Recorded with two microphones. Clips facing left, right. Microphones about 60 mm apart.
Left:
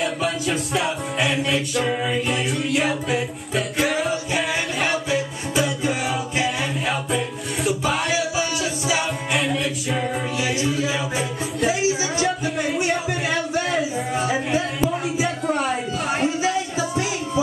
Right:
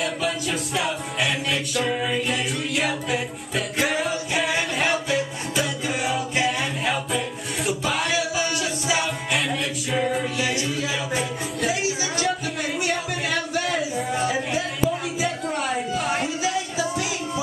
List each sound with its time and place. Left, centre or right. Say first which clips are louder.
0.0 s music: left 2 dB; centre
5.1 s music: left 2 dB; centre
12.7 s a sound: left 3 dB; centre
14.1 s music: left 3 dB; centre
14.9 s a sound: left 2 dB; centre
16.4 s music: left 2 dB; left